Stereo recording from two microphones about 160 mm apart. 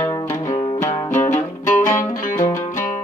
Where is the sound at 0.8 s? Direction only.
15° left (ahead or behind).